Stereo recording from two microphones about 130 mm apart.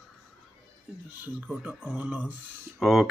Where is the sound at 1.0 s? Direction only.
10° right (ahead or behind).